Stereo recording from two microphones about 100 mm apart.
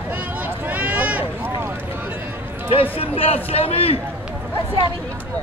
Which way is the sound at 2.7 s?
70° left (ahead or behind).